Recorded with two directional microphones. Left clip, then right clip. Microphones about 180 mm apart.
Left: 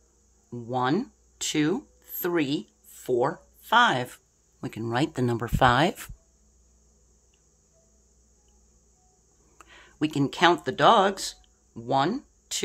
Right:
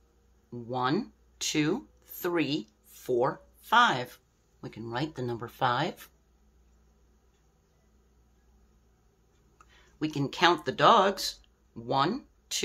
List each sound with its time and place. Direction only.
0.5 s speech: 30° left (ahead or behind)
4.6 s speech: 50° left (ahead or behind)
9.6 s speech: 45° left (ahead or behind); by 12.6 s 25° left (ahead or behind)